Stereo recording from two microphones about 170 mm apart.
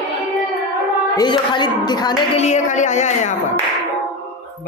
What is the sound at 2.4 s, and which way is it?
Speech, 45° left (ahead or behind).